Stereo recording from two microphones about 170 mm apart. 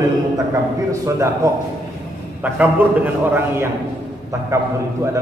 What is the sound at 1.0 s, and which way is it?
A man's voice, 15° right (ahead or behind).